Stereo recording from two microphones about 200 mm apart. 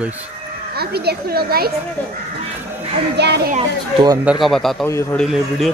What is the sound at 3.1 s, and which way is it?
Speech, 55° right (ahead or behind).